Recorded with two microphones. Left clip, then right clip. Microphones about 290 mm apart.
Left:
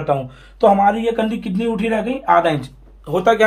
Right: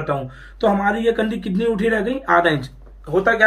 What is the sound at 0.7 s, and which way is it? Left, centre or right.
Speech, centre.